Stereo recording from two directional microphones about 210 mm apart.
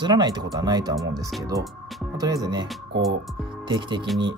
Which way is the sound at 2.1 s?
15° right (ahead or behind).